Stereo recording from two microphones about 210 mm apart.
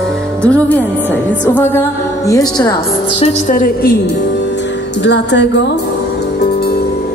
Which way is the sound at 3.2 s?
35° left (ahead or behind).